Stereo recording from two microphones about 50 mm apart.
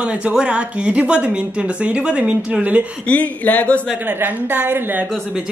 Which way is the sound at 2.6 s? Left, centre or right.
Right.